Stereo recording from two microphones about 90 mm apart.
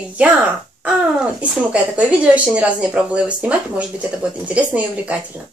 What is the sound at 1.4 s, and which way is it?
Speech, 15° right (ahead or behind).